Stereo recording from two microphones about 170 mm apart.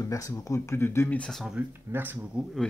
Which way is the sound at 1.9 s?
10° right (ahead or behind).